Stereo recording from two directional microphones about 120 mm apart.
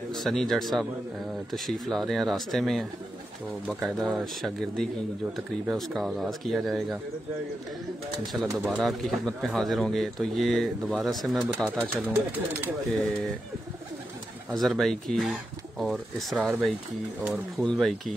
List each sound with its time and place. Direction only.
0.1 s speech: centre (ahead or behind)
8.8 s speech: centre (ahead or behind)
11.9 s speech: 15° right (ahead or behind)
12.9 s speech: 5° left (ahead or behind)
14.5 s speech: centre (ahead or behind)